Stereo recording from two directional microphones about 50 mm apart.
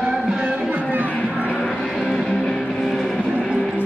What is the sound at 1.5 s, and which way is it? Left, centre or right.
Music, centre.